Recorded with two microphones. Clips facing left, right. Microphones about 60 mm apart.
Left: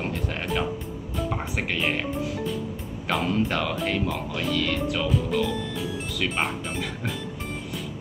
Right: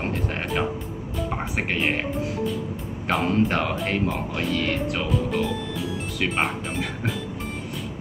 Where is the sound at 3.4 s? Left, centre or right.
Right.